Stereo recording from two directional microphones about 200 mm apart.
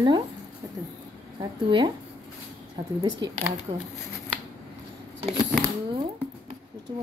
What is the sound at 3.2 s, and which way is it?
Speech, 20° right (ahead or behind).